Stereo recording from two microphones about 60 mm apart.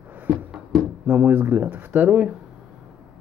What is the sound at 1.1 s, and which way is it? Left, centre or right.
Speech, right.